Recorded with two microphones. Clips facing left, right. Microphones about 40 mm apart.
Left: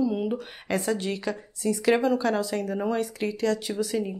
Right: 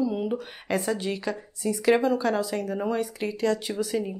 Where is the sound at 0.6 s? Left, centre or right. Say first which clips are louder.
Even; centre.